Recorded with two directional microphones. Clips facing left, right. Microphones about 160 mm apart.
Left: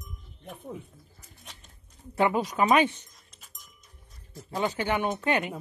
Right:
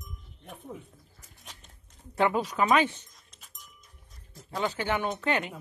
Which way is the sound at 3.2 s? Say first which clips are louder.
Right 1 dB; centre (ahead or behind).